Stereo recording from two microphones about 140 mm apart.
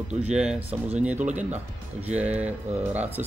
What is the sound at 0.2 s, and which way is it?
Speech, 5° right (ahead or behind).